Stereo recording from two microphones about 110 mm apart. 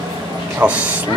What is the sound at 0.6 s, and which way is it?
Speech, 15° right (ahead or behind).